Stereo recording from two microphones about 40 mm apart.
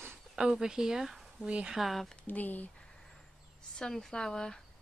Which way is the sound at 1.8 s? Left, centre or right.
Centre.